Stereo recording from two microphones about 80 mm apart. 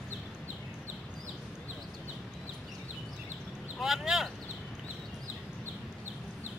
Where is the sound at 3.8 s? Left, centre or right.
Centre.